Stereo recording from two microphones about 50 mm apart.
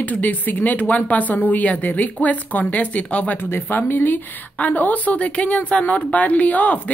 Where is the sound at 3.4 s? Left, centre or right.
Left.